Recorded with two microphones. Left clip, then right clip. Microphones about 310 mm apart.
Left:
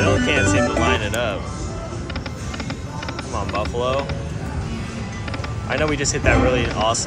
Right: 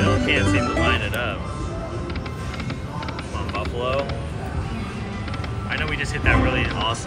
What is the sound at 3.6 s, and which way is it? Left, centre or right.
Speech, centre.